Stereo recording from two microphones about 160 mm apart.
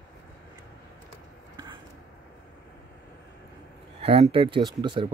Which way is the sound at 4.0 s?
40° right (ahead or behind).